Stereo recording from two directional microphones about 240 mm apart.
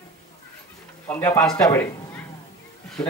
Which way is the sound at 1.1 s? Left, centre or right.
Centre.